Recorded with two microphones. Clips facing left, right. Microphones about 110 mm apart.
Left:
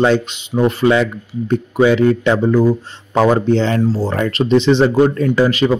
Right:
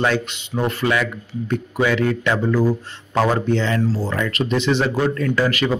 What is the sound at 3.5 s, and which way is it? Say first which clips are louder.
Speech: left 5 dB; 30° left (ahead or behind).